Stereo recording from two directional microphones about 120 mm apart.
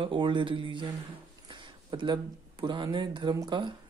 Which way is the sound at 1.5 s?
40° right (ahead or behind).